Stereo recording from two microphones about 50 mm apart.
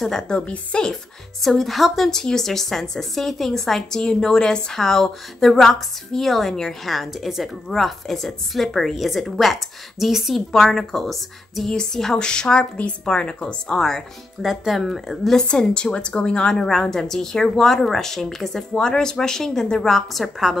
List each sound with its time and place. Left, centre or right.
0.3 s a woman's voice: left
1.4 s a woman's voice: centre
2.0 s a woman's voice: centre
10.5 s a woman's voice: centre
14.4 s a woman's voice: centre
15.3 s a woman's voice: centre
19.9 s a woman's voice: centre